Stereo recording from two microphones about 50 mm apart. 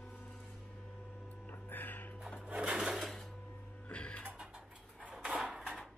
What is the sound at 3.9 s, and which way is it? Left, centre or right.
Music, left.